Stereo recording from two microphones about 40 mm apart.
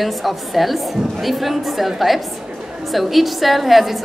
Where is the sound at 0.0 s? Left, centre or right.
Centre.